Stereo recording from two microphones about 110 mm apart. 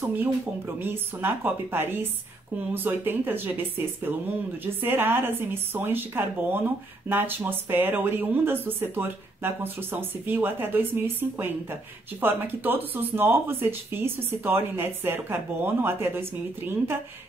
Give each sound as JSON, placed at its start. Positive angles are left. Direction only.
{"t": 0.7, "sound": "speech", "side_deg": -20}